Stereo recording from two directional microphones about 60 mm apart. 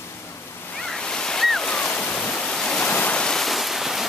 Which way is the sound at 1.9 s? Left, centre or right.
Left.